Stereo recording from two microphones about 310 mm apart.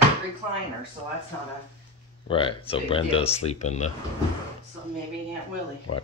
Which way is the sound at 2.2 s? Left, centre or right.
Centre.